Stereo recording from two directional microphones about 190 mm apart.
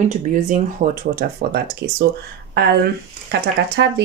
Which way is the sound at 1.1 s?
55° right (ahead or behind).